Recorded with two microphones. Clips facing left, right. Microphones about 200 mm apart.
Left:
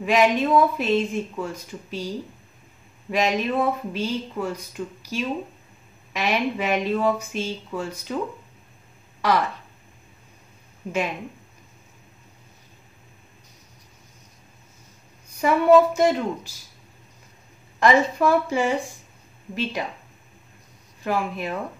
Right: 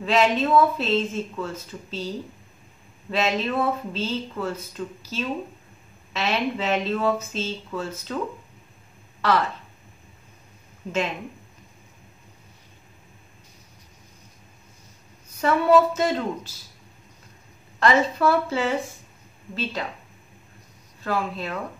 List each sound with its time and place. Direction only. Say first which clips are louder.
0.0 s speech: left 1 dB; 15° left (ahead or behind)
9.2 s speech: even; 15° left (ahead or behind)
10.8 s speech: even; 10° left (ahead or behind)
15.4 s speech: left 2 dB; 15° left (ahead or behind)
17.7 s speech: left 2 dB; 15° left (ahead or behind)
21.0 s speech: left 1 dB; 15° left (ahead or behind)